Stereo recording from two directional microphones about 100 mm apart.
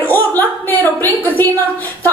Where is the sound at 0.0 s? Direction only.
20° left (ahead or behind).